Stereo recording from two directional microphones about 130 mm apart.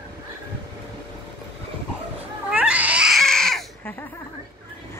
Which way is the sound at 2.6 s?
10° right (ahead or behind).